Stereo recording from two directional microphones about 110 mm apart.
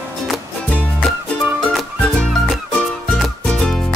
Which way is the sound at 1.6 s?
5° left (ahead or behind).